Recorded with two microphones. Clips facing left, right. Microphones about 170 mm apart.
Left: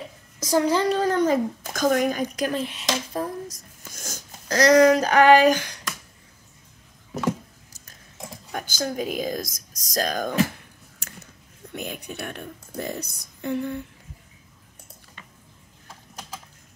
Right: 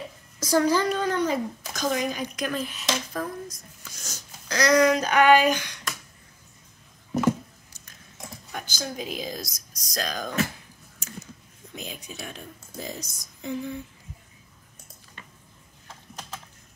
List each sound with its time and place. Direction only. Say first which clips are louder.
0.4 s a child's voice: left 1 dB; 20° left (ahead or behind)
3.4 s speech: left 2 dB; 50° left (ahead or behind)
8.5 s speech: left 6 dB; 45° left (ahead or behind)
11.7 s a woman's voice: left 5 dB; 60° left (ahead or behind)